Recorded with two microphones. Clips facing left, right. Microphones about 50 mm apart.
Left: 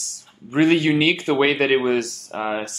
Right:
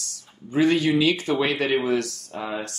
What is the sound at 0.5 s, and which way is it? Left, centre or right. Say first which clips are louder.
Speech: left 3 dB; left.